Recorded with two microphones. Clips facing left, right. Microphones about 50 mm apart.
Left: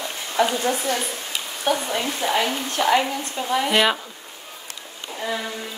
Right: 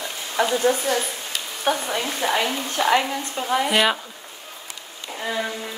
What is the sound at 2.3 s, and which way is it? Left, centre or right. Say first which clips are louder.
A woman's voice: even; centre.